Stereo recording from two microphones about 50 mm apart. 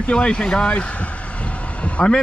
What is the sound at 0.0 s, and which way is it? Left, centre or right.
A man's voice, centre.